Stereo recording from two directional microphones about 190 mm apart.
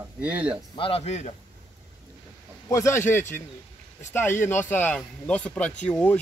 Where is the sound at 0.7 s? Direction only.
30° left (ahead or behind).